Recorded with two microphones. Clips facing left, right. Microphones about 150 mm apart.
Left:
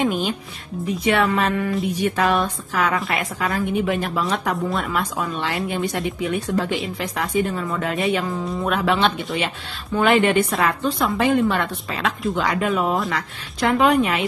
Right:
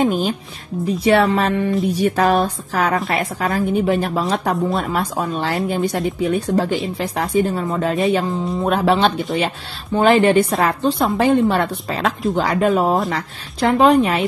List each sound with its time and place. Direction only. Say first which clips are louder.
0.0 s a woman's voice: right 4 dB; 40° right (ahead or behind)